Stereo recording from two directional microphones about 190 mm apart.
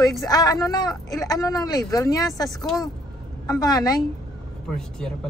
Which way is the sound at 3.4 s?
20° left (ahead or behind).